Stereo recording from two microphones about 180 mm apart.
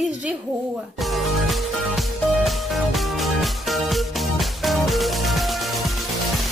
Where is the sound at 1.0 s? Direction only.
Centre (ahead or behind).